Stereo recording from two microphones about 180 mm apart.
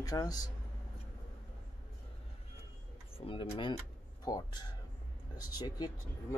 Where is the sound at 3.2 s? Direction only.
30° left (ahead or behind).